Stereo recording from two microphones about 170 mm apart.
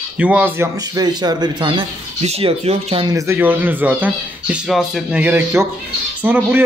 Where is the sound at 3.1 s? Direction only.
20° right (ahead or behind).